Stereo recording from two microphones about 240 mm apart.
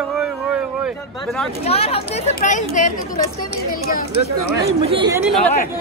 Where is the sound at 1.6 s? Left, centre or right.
Left.